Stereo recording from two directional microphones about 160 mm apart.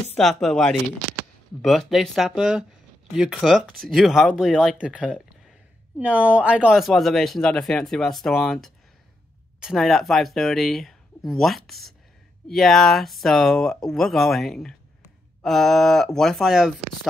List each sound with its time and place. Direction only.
0.1 s speech: centre (ahead or behind)